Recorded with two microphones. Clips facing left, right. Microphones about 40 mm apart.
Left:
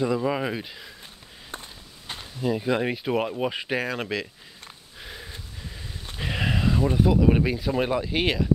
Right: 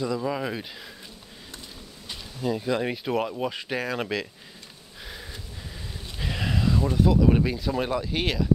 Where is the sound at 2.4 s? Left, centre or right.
Centre.